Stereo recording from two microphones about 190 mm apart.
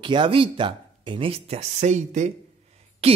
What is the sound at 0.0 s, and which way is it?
Speech, 25° right (ahead or behind).